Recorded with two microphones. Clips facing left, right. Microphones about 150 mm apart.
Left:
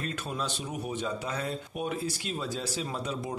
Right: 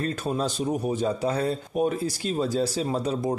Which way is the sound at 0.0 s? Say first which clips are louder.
Right 8 dB; 35° right (ahead or behind).